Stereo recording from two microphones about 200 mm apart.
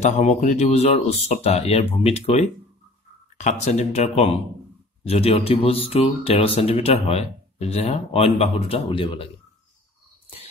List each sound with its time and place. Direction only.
0.0 s speech: 35° left (ahead or behind)